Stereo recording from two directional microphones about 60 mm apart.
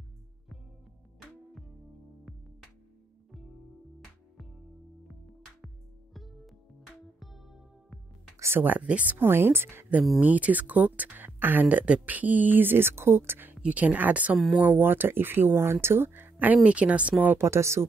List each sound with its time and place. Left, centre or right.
6.1 s music: centre
8.4 s speech: right
8.6 s speech: right
9.2 s speech: right
10.2 s speech: right
13.6 s speech: right
16.6 s speech: right
17.4 s speech: right